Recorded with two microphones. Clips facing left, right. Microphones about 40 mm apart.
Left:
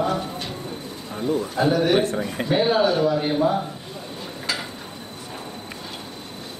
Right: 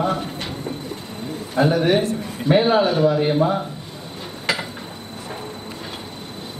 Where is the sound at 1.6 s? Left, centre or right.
Right.